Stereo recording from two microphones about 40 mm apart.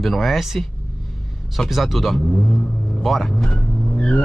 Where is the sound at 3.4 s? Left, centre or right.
Left.